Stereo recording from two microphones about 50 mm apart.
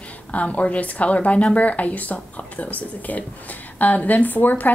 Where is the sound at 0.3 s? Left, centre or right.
Left.